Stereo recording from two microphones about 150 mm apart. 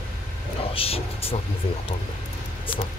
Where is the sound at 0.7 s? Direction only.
40° left (ahead or behind).